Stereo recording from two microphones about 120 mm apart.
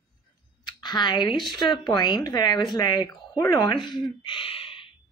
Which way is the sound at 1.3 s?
Centre (ahead or behind).